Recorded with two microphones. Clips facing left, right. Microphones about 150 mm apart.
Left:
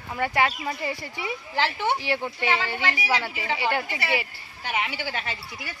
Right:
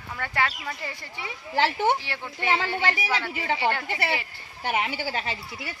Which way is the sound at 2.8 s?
45° right (ahead or behind).